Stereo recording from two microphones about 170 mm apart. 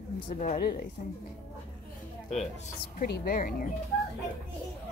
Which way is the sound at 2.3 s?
40° left (ahead or behind).